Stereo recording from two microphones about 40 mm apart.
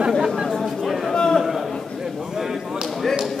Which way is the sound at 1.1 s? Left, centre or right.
Centre.